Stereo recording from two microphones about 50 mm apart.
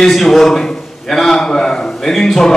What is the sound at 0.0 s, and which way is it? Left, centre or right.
A man's voice, centre.